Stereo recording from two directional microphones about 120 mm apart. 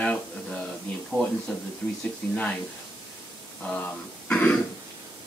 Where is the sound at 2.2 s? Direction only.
15° left (ahead or behind).